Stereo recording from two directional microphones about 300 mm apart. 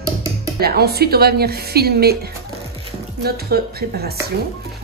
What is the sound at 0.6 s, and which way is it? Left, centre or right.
Speech, right.